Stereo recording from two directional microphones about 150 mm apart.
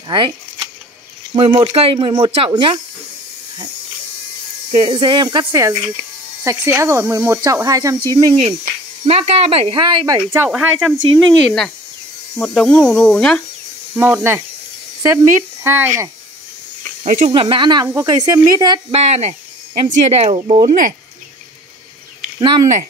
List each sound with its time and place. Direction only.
0.1 s speech: 30° right (ahead or behind)
4.6 s speech: 40° right (ahead or behind)
9.0 s speech: 45° right (ahead or behind)
10.0 s speech: 25° right (ahead or behind)
10.4 s speech: 5° right (ahead or behind)
13.9 s speech: 15° right (ahead or behind)
15.6 s speech: 15° right (ahead or behind)
17.0 s speech: 55° right (ahead or behind)
17.3 s speech: 35° right (ahead or behind)
18.9 s speech: 45° right (ahead or behind)
20.6 s speech: 65° right (ahead or behind)